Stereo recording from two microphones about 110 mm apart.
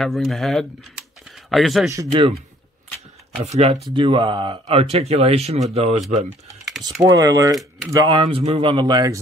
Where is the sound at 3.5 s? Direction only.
75° right (ahead or behind).